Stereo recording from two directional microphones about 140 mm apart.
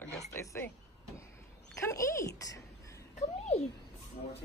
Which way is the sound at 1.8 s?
20° left (ahead or behind).